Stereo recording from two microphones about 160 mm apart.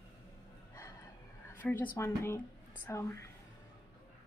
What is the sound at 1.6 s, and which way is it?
A woman's voice, 10° left (ahead or behind).